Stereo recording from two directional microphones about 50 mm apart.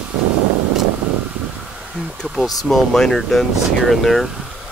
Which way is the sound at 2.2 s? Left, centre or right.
Centre.